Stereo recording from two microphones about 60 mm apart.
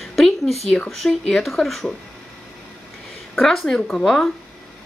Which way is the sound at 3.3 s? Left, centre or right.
Centre.